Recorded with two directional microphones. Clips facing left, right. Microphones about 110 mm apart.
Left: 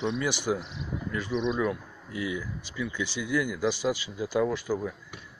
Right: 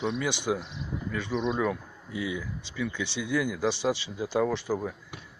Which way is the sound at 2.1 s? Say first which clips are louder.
Even; 25° right (ahead or behind).